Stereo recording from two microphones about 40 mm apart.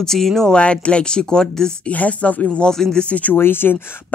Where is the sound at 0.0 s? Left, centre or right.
Centre.